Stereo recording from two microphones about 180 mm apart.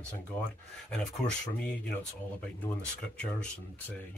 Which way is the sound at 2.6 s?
5° left (ahead or behind).